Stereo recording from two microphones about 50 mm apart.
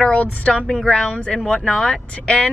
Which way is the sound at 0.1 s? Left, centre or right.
Left.